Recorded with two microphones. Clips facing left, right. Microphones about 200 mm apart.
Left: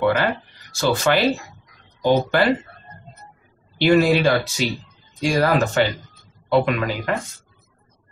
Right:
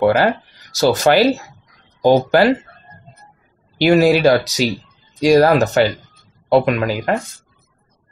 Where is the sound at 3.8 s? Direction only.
40° right (ahead or behind).